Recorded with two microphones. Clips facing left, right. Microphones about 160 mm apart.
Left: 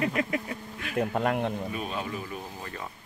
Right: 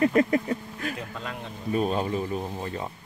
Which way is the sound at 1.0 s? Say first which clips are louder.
Left 10 dB; 60° left (ahead or behind).